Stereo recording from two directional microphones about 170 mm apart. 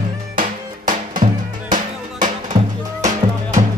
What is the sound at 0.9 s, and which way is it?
Music, 50° right (ahead or behind).